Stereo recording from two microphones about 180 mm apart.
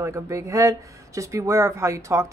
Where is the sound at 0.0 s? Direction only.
15° right (ahead or behind).